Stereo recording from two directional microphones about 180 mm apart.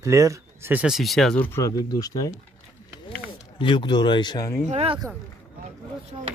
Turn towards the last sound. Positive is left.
turn(degrees=-30)  # may be behind; listen again after turning